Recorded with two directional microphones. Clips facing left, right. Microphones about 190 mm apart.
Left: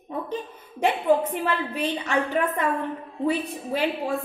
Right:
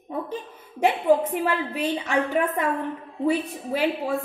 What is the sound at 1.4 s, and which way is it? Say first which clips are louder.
A woman's voice: right 1 dB; 10° right (ahead or behind).